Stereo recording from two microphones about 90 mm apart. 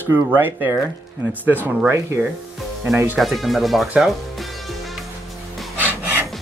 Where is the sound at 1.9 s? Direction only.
30° right (ahead or behind).